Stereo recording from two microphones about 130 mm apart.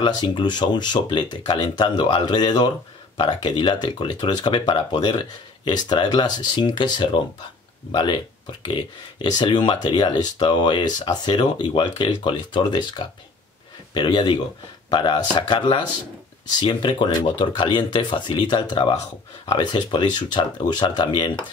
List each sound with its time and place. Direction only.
0.0 s speech: 35° left (ahead or behind)